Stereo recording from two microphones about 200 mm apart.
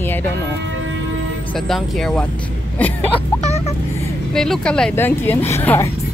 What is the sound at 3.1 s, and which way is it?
Speech, 30° left (ahead or behind).